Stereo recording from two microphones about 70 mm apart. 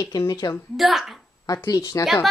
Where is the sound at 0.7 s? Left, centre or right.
Centre.